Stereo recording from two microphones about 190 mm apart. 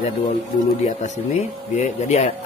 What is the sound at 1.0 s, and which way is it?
Speech, 35° left (ahead or behind).